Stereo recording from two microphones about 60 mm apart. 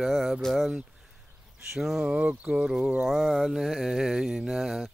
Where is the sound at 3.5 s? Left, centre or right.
Centre.